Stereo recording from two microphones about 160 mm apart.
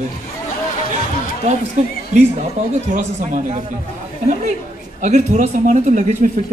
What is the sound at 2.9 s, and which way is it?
Speech, 55° right (ahead or behind).